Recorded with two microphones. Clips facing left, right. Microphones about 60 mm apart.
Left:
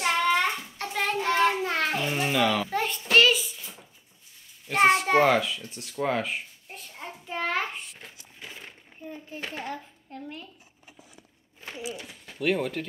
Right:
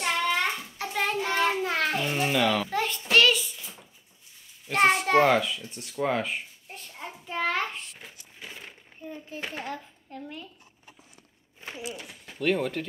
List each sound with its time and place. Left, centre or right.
0.0 s child singing: centre
4.6 s a sound: centre
9.4 s a child's voice: centre
11.8 s a child's voice: centre